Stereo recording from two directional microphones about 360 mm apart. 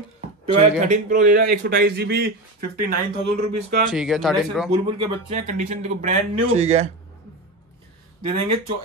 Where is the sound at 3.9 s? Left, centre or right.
Centre.